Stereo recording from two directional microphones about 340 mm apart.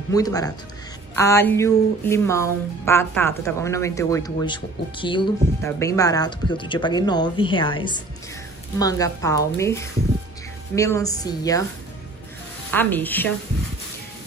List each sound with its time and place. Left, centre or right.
0.1 s speech: centre
12.7 s a woman's voice: centre